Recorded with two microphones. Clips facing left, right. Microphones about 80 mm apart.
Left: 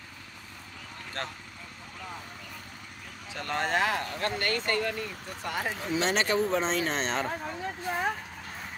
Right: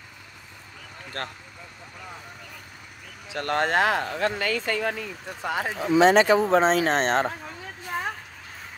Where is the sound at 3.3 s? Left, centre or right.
Right.